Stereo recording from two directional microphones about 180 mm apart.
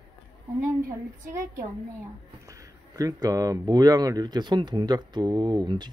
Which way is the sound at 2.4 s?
20° right (ahead or behind).